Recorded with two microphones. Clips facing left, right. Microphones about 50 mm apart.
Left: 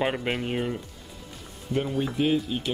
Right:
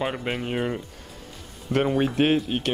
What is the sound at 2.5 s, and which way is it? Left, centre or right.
Speech, right.